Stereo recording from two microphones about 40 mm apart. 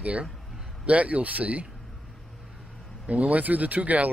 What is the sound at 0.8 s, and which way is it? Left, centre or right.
Speech, right.